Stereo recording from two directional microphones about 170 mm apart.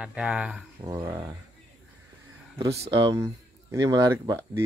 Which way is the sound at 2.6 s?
20° right (ahead or behind).